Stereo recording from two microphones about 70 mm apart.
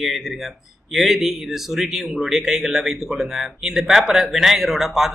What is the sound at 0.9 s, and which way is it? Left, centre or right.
Speech, centre.